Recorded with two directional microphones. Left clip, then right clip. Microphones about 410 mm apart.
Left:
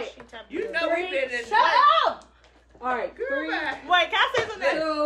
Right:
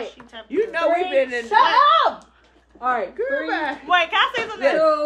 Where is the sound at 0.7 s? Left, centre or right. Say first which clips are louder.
Right 4 dB; centre.